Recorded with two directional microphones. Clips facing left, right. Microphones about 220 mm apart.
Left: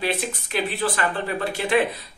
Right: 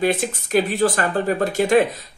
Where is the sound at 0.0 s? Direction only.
45° right (ahead or behind).